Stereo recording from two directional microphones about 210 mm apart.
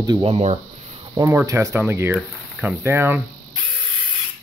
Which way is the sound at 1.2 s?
15° right (ahead or behind).